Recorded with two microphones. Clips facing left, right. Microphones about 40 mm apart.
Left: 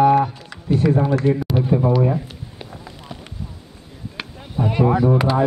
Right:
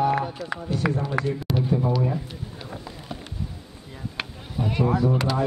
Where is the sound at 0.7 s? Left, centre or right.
Left.